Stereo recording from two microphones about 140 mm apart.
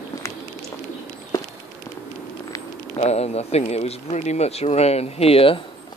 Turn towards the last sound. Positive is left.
turn(degrees=40)  # may be behind; listen again after turning